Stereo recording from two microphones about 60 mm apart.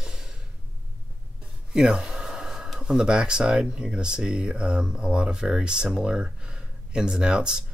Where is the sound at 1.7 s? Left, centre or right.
Centre.